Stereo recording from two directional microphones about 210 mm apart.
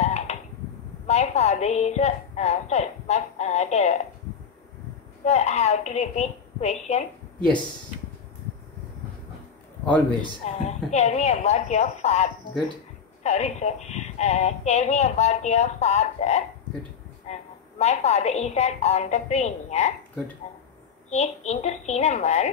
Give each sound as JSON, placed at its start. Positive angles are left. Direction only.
{"t": 0.0, "sound": "a sound", "side_deg": 30}
{"t": 1.0, "sound": "a woman's voice", "side_deg": 30}
{"t": 5.2, "sound": "speech", "side_deg": 30}
{"t": 10.4, "sound": "speech", "side_deg": 30}
{"t": 21.1, "sound": "speech", "side_deg": 30}